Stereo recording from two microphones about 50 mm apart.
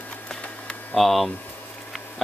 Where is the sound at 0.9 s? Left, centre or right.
Centre.